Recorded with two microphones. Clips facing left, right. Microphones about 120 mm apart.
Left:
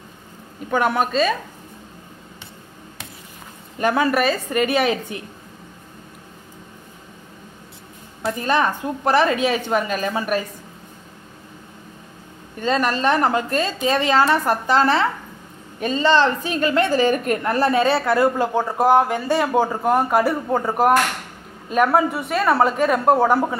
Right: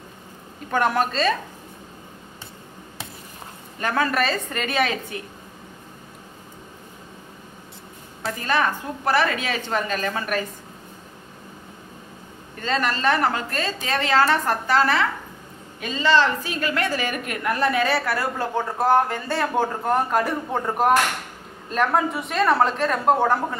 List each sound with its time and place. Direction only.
0.7 s speech: 5° left (ahead or behind)
3.8 s a woman's voice: 15° left (ahead or behind)
8.3 s a woman's voice: 20° left (ahead or behind)
12.5 s a woman's voice: 15° left (ahead or behind)